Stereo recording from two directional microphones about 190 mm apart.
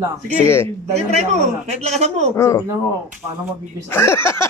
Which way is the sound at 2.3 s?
15° left (ahead or behind).